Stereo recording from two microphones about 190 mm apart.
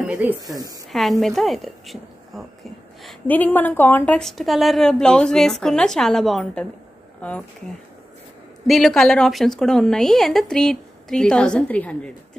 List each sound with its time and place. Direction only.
0.0 s speech: 5° right (ahead or behind)
0.4 s speech: 20° right (ahead or behind)
1.2 s a woman's voice: centre (ahead or behind)
8.6 s a woman's voice: centre (ahead or behind)